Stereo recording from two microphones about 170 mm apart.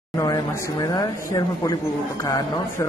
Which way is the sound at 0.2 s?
20° left (ahead or behind).